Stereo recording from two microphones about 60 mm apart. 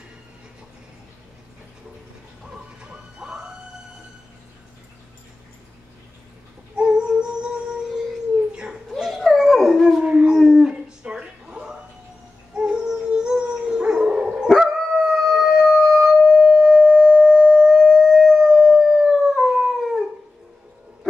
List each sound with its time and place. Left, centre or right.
2.5 s music: centre
6.8 s a sound: centre
8.8 s dog: centre
10.0 s howl: centre
15.1 s howl: centre
16.6 s sine wave: centre
17.6 s howl: centre